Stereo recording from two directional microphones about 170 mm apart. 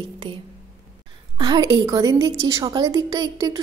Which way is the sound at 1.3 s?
25° right (ahead or behind).